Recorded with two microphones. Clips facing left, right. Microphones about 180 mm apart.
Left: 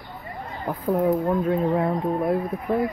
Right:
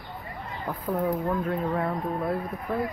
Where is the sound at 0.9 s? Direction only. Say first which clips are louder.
Left 6 dB; 25° left (ahead or behind).